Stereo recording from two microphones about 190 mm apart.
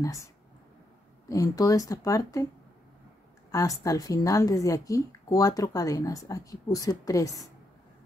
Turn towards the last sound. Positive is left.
turn(degrees=20)  # may be behind; listen again after turning